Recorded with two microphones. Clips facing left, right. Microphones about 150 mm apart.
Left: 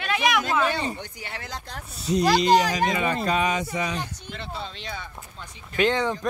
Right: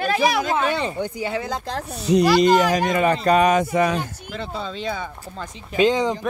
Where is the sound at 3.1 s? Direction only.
60° right (ahead or behind).